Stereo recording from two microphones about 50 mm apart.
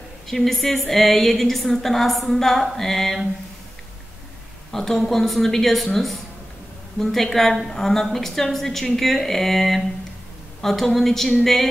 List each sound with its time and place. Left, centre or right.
0.3 s a woman's voice: centre
4.7 s a woman's voice: centre